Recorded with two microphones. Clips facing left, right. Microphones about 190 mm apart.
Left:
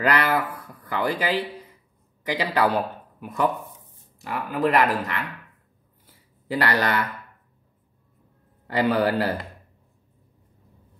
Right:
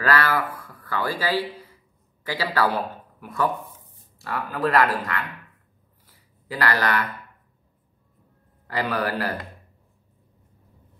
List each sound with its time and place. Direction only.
0.0 s a man's voice: 20° left (ahead or behind)
6.0 s a sound: 25° left (ahead or behind)
8.6 s speech: 25° left (ahead or behind)